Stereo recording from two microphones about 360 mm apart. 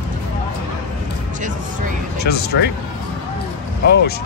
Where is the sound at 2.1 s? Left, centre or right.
Left.